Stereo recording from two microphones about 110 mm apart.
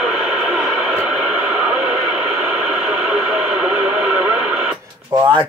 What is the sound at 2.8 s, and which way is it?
Radio, 10° right (ahead or behind).